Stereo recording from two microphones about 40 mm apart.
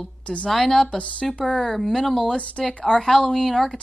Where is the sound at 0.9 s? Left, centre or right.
Left.